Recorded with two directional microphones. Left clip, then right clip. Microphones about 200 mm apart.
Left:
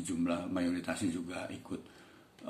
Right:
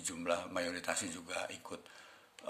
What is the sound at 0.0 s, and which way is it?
A man's voice, 45° right (ahead or behind).